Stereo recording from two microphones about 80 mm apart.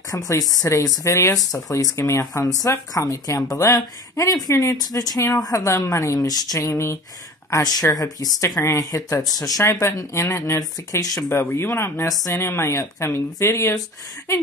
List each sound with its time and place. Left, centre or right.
0.1 s speech: left
6.7 s speech: left
8.4 s speech: left
9.2 s speech: left
9.7 s speech: left
11.2 s speech: left